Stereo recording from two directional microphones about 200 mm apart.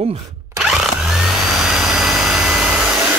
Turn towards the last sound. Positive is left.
turn(degrees=-5)  # may be behind; listen again after turning